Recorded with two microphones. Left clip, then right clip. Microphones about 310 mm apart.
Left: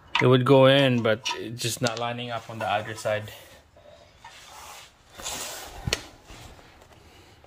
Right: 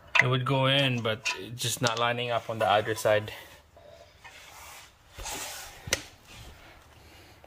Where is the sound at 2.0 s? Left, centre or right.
Centre.